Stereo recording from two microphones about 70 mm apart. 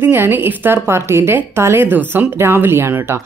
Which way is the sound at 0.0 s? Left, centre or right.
Right.